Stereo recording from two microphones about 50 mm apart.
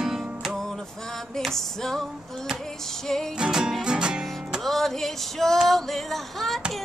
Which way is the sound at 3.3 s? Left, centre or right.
Centre.